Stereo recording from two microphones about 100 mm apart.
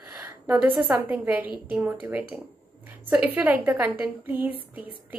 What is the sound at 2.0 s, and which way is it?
A woman's voice, 15° right (ahead or behind).